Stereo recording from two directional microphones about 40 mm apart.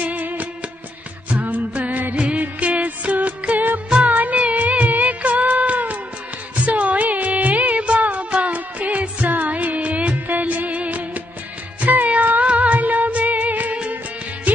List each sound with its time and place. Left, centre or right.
0.0 s music: right
2.1 s music: right
4.0 s music of bollywood: right
11.8 s music: right